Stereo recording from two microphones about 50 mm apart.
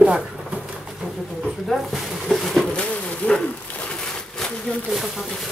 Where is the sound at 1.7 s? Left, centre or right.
Centre.